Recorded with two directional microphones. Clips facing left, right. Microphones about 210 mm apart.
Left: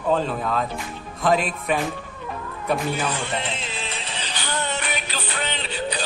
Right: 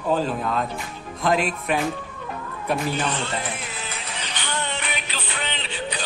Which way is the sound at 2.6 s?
5° left (ahead or behind).